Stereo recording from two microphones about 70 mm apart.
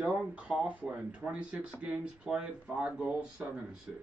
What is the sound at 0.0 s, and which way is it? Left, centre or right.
Speech, centre.